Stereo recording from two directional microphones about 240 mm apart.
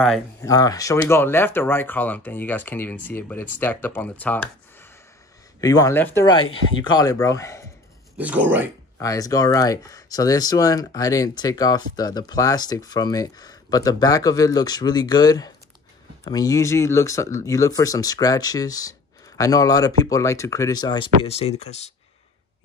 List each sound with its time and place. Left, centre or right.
0.4 s speech: centre
8.2 s speech: centre
9.0 s speech: centre